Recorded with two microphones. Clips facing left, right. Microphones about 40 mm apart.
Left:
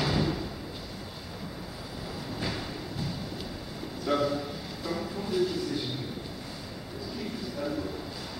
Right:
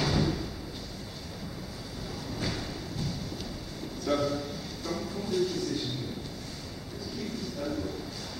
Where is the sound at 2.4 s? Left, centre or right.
Centre.